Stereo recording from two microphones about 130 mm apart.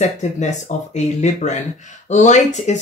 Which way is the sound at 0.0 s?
65° left (ahead or behind).